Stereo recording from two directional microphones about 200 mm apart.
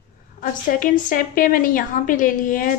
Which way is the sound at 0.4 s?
45° left (ahead or behind).